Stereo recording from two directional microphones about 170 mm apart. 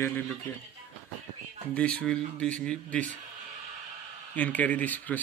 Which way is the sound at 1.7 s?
10° left (ahead or behind).